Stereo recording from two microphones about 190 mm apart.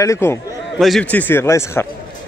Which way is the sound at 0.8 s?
Centre (ahead or behind).